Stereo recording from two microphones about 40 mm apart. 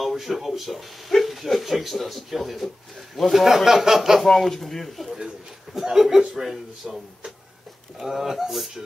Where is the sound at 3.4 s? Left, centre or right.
Centre.